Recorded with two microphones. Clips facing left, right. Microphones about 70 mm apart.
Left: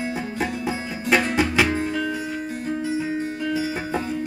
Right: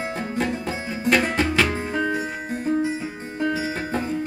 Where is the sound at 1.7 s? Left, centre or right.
Right.